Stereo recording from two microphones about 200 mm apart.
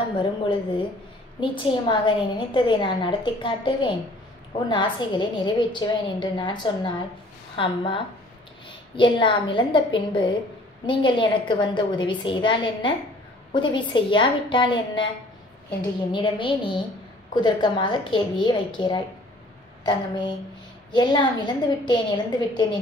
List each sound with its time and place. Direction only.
1.4 s a woman's voice: 25° left (ahead or behind)
16.1 s a woman's voice: 25° left (ahead or behind)
19.8 s a sound: 20° left (ahead or behind)
20.9 s a woman's voice: 20° left (ahead or behind)